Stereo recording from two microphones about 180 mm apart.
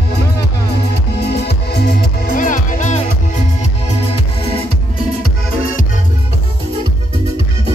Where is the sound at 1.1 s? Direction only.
65° left (ahead or behind); by 3.4 s 40° left (ahead or behind).